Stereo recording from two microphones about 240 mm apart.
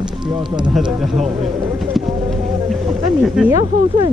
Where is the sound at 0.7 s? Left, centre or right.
Centre.